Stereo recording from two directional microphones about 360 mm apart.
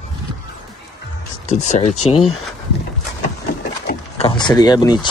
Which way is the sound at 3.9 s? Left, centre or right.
Centre.